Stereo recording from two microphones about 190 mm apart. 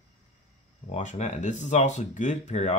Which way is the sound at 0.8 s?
40° left (ahead or behind).